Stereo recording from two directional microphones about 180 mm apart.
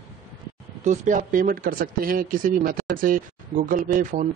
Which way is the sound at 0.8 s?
40° right (ahead or behind).